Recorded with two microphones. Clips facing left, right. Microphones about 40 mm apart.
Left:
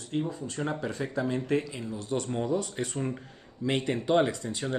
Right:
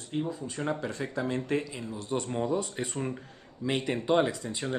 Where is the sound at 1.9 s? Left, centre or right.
Centre.